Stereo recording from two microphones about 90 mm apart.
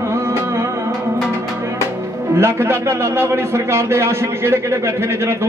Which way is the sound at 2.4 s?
30° right (ahead or behind).